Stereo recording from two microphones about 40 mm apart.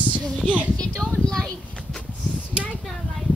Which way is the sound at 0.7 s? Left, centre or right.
Left.